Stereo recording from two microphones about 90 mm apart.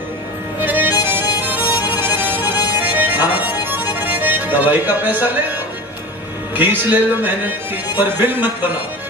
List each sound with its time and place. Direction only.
0.6 s music: 20° right (ahead or behind)
6.5 s speech: 20° right (ahead or behind)